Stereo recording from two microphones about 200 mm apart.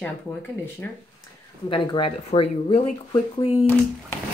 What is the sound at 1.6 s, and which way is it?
Speech, 25° left (ahead or behind).